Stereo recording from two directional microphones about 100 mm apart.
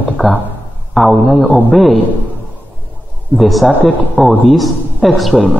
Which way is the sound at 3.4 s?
Centre (ahead or behind).